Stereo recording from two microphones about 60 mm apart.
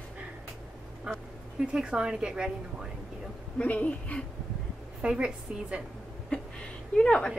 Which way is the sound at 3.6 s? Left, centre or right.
Left.